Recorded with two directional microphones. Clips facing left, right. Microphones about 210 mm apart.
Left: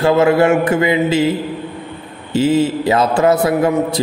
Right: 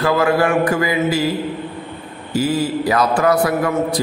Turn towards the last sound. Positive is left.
turn(degrees=25)  # may be behind; listen again after turning